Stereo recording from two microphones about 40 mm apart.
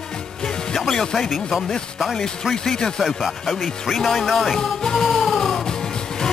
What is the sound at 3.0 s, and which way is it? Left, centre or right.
Speech, centre.